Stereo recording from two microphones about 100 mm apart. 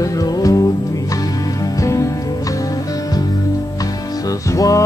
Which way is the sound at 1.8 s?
30° left (ahead or behind).